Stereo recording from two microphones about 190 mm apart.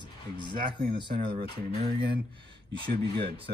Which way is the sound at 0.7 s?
25° right (ahead or behind).